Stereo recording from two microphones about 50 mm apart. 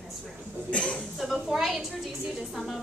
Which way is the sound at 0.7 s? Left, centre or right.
Left.